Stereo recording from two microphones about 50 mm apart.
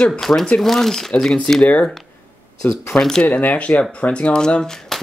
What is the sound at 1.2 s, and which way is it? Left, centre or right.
Speech, centre.